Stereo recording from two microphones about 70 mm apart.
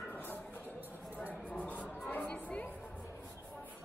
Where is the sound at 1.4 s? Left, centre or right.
Left.